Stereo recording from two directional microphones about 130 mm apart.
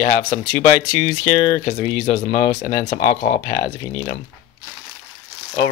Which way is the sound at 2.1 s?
60° left (ahead or behind).